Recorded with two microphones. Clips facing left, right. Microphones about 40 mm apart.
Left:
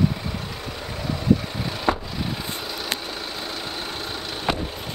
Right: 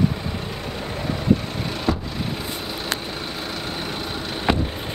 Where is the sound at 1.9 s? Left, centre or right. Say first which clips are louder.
Left 1 dB; left.